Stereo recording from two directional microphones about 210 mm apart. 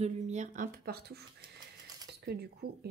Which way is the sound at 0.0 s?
35° right (ahead or behind).